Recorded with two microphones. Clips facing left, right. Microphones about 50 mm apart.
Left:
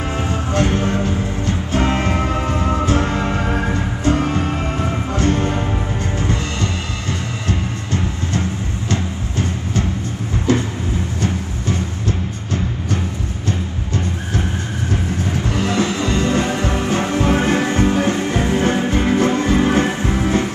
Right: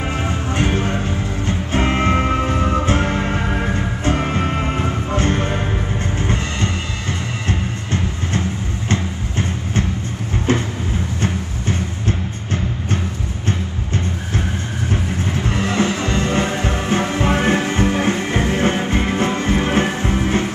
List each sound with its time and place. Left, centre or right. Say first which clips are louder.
0.5 s music: left 2 dB; right
10.5 s vehicle: left 2 dB; right
11.6 s music: even; right
15.4 s music: even; right